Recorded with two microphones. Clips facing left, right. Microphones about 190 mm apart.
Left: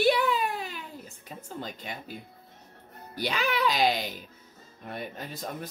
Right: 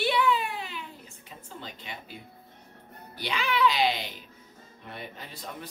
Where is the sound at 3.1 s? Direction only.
40° left (ahead or behind).